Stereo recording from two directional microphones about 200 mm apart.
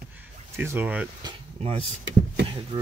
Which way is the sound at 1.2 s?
30° right (ahead or behind).